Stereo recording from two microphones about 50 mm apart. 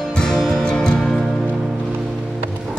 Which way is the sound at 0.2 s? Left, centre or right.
Centre.